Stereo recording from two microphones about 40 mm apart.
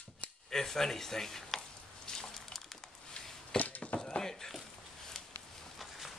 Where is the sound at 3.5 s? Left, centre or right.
Left.